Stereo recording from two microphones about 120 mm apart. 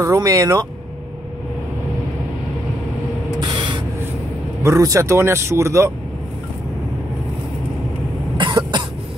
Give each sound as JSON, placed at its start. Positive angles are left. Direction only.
{"t": 0.0, "sound": "speech", "side_deg": -25}
{"t": 3.3, "sound": "spray", "side_deg": -40}
{"t": 4.6, "sound": "speech", "side_deg": -25}
{"t": 8.4, "sound": "cough", "side_deg": -40}